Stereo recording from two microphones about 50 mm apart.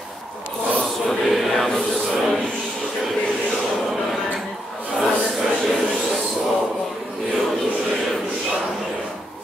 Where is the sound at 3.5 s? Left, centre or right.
Centre.